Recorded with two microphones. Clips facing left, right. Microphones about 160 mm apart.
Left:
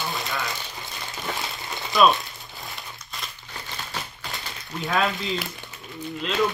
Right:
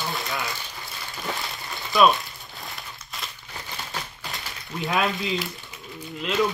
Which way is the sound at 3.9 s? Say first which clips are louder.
Left 1 dB; centre (ahead or behind).